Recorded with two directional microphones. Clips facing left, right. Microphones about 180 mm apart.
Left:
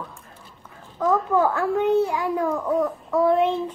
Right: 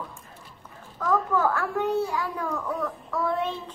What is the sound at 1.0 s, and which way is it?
A child's voice, 20° left (ahead or behind).